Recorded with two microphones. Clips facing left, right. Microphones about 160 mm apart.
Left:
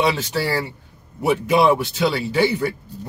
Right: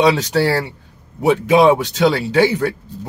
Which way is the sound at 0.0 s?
75° right (ahead or behind).